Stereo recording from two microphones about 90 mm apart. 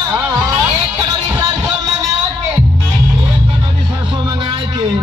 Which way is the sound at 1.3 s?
40° right (ahead or behind).